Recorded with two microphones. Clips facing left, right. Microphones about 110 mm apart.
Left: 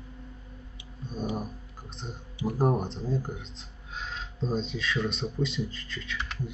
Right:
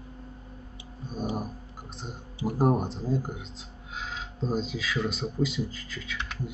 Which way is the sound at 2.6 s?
5° right (ahead or behind).